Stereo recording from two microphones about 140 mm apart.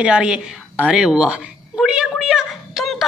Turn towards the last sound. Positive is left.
turn(degrees=0)  # may be behind; listen again after turning